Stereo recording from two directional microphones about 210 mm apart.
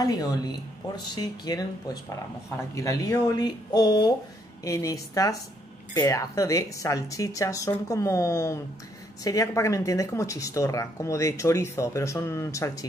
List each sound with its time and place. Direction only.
0.0 s speech: 15° left (ahead or behind)